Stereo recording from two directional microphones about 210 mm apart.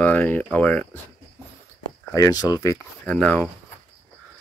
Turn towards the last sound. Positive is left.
turn(degrees=5)  # may be behind; listen again after turning